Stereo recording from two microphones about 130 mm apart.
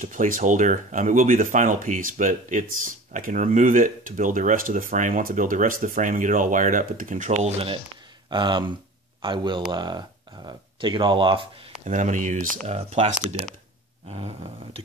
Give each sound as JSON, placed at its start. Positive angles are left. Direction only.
{"t": 0.0, "sound": "speech", "side_deg": -85}
{"t": 8.3, "sound": "speech", "side_deg": -35}
{"t": 11.8, "sound": "speech", "side_deg": -70}
{"t": 12.6, "sound": "speech", "side_deg": -55}
{"t": 14.0, "sound": "a sound", "side_deg": -50}